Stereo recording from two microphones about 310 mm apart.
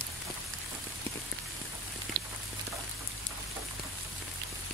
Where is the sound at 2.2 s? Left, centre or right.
Right.